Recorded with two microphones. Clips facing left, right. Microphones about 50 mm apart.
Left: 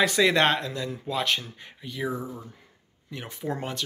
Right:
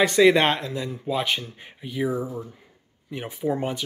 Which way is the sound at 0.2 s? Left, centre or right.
Centre.